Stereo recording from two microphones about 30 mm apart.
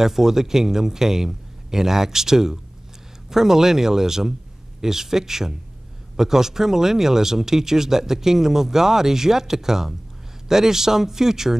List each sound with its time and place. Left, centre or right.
0.0 s speech: centre